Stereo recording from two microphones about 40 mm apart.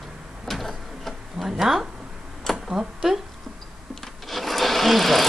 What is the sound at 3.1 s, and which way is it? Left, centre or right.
Speech, centre.